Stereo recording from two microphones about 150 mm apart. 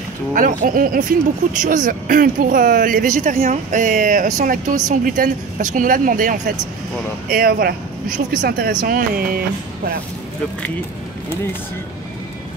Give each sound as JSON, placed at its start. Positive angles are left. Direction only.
{"t": 0.3, "sound": "speech", "side_deg": -65}
{"t": 8.5, "sound": "speech", "side_deg": -90}